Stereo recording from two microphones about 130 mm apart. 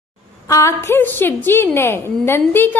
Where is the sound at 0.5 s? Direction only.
20° left (ahead or behind).